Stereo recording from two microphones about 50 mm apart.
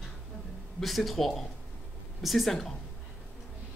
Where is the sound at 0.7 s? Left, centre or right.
Centre.